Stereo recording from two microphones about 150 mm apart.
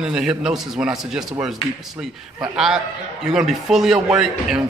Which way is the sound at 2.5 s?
5° right (ahead or behind).